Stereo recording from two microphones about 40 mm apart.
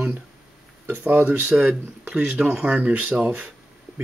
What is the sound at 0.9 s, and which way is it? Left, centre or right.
Speech, right.